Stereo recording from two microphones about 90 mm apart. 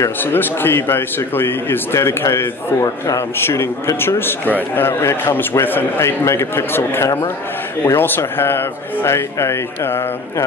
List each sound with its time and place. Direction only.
0.2 s speech: 25° left (ahead or behind)